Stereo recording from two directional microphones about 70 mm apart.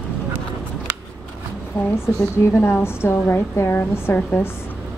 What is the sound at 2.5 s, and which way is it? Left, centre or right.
A woman's voice, left.